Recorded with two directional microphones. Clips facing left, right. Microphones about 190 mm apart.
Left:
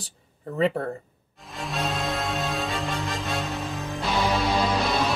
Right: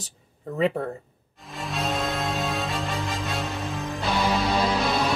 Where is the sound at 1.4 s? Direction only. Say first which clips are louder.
Even; centre (ahead or behind).